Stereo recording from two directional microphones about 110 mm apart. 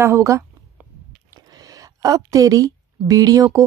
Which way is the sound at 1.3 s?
35° right (ahead or behind).